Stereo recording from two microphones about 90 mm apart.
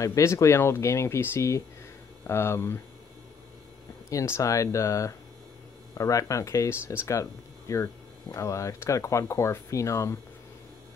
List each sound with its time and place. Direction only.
0.0 s speech: 35° left (ahead or behind)
4.1 s speech: 35° left (ahead or behind)